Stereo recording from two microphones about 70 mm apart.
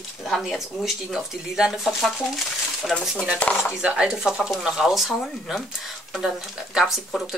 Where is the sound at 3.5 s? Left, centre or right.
Centre.